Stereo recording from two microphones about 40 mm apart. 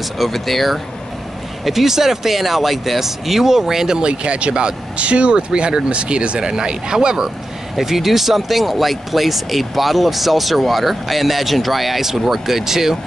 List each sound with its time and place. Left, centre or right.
0.2 s speech: centre
4.0 s speech: right
7.8 s speech: centre